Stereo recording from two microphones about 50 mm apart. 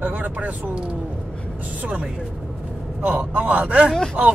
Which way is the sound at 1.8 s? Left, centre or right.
Right.